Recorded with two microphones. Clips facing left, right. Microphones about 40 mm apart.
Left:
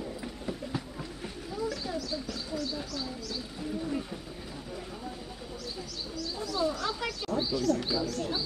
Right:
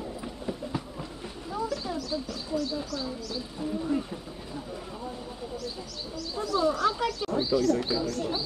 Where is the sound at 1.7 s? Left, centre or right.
Centre.